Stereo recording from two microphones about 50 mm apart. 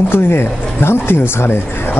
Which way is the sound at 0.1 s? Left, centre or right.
Left.